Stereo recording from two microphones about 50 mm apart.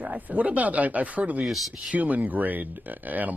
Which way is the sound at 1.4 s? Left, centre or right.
Centre.